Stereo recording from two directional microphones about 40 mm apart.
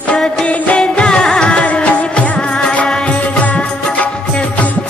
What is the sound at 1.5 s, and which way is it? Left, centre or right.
Music, left.